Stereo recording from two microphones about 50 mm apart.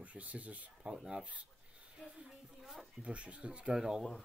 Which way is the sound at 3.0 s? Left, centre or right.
Right.